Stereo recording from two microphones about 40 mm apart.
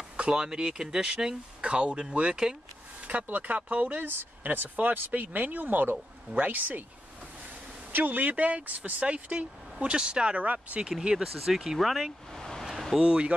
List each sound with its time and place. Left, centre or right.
0.3 s speech: right
3.1 s speech: right
4.0 s speech: right
7.9 s speech: right
9.9 s speech: right
10.4 s speech: right
11.1 s speech: centre
12.4 s a sound: centre
13.0 s speech: right